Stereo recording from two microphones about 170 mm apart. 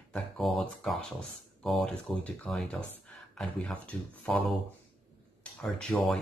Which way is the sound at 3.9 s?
5° left (ahead or behind).